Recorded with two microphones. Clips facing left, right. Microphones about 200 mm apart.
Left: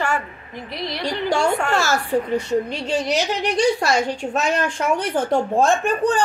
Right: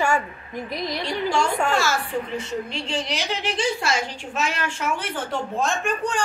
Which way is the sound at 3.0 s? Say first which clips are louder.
Left 6 dB; 45° left (ahead or behind).